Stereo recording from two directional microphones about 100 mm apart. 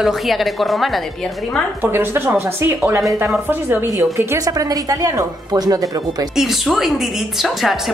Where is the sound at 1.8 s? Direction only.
20° right (ahead or behind).